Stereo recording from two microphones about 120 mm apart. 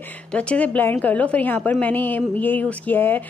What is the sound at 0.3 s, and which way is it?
A woman's voice, 10° left (ahead or behind).